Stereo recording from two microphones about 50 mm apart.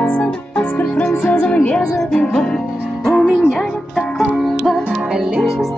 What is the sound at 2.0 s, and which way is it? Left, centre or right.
Music, centre.